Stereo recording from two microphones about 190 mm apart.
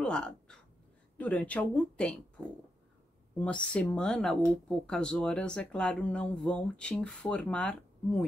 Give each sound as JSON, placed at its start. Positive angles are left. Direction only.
{"t": 0.0, "sound": "a sound", "side_deg": 5}
{"t": 1.1, "sound": "speech", "side_deg": 10}
{"t": 3.3, "sound": "speech", "side_deg": 5}